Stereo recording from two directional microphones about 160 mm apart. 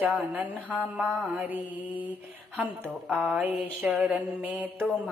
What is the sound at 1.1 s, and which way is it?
Speech, centre (ahead or behind).